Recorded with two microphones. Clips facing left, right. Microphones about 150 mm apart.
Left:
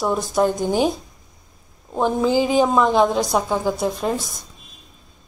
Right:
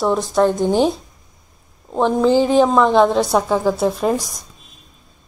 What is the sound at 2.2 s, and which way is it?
A woman's voice, 5° left (ahead or behind).